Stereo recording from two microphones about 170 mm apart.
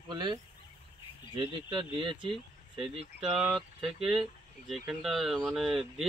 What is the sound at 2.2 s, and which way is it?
Speech, centre (ahead or behind).